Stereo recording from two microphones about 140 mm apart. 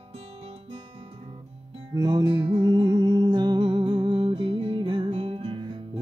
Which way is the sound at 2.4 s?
50° right (ahead or behind).